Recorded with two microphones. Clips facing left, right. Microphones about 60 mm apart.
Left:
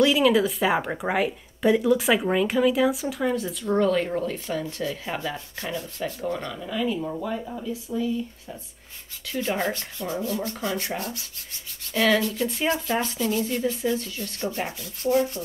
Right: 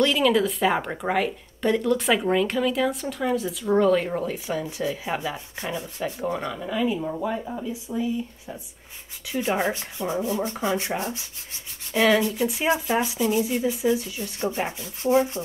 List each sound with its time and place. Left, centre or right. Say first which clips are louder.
0.0 s speech: left 1 dB; centre
9.3 s rub: right 2 dB; centre
11.9 s speech: right 2 dB; centre